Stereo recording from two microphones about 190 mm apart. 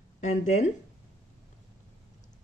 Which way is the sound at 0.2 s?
40° left (ahead or behind).